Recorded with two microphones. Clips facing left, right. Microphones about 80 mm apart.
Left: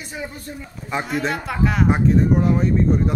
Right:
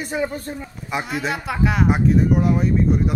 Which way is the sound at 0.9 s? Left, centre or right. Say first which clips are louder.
Left 1 dB; centre.